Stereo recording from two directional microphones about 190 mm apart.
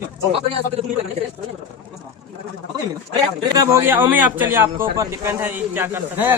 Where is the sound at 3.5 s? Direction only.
10° right (ahead or behind).